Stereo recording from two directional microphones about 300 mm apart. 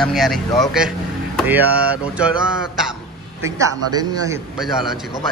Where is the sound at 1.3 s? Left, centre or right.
Centre.